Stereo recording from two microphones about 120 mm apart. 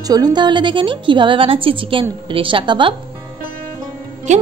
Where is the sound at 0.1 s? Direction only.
35° right (ahead or behind).